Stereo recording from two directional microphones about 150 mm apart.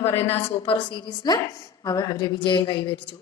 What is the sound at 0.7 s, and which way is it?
Speech, 30° left (ahead or behind).